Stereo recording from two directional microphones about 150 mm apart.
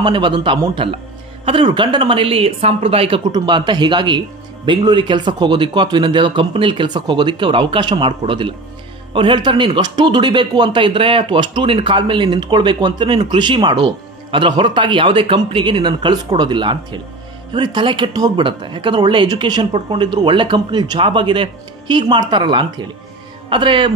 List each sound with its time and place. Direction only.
0.0 s a man's voice: 30° right (ahead or behind)